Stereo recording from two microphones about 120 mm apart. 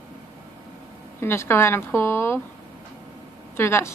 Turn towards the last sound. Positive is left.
turn(degrees=20)  # may be behind; listen again after turning